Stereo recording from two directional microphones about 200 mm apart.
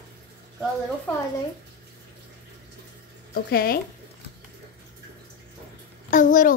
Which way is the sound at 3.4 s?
50° left (ahead or behind).